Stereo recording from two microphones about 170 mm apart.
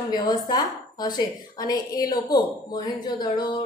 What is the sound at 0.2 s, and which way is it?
A woman's voice, 25° left (ahead or behind).